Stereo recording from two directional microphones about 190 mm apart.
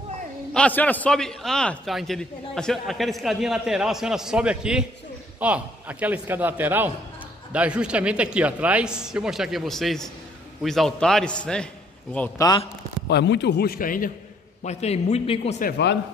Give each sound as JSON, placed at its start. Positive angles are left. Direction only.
{"t": 0.5, "sound": "a man's voice", "side_deg": 5}
{"t": 12.4, "sound": "a man's voice", "side_deg": 20}
{"t": 13.1, "sound": "a man's voice", "side_deg": 65}
{"t": 14.6, "sound": "a man's voice", "side_deg": 35}
{"t": 15.6, "sound": "a man's voice", "side_deg": 65}